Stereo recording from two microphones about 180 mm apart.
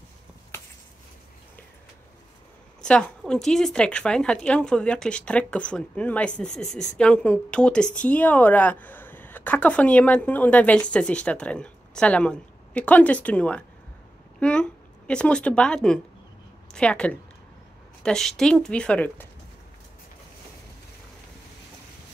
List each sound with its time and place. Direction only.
2.8 s a woman's voice: 5° left (ahead or behind)